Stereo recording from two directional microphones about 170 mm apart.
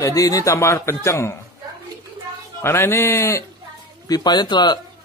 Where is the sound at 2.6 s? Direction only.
15° left (ahead or behind).